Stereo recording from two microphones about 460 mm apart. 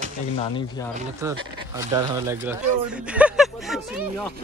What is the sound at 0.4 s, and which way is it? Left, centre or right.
Speech, centre.